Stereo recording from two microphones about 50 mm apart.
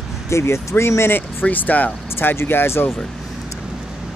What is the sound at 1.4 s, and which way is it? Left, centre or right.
Speech, left.